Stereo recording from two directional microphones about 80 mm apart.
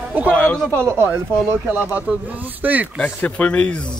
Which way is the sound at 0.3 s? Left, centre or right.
Centre.